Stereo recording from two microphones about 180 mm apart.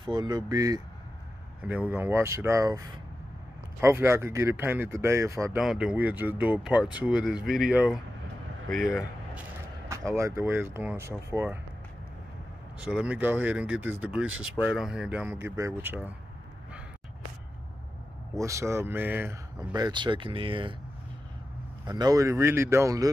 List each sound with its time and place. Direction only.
0.0 s speech: 25° right (ahead or behind)
1.6 s speech: 10° right (ahead or behind)
3.8 s speech: 15° right (ahead or behind)
5.6 s speech: 5° right (ahead or behind)
9.8 s speech: 15° right (ahead or behind)
12.8 s speech: 5° right (ahead or behind)
18.3 s speech: 15° right (ahead or behind)
19.7 s speech: 25° right (ahead or behind)
21.8 s speech: 20° right (ahead or behind)